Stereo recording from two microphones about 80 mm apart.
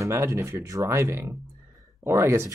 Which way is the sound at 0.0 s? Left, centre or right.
Right.